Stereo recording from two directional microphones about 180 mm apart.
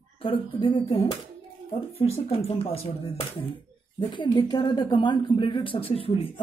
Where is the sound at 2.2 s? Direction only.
35° left (ahead or behind).